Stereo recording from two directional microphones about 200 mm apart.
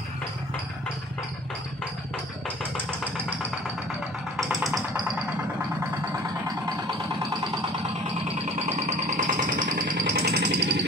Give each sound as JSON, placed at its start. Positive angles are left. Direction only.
{"t": 4.4, "sound": "engine", "side_deg": 0}
{"t": 8.6, "sound": "music", "side_deg": -35}